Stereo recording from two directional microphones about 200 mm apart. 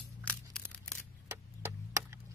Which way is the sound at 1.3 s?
15° right (ahead or behind).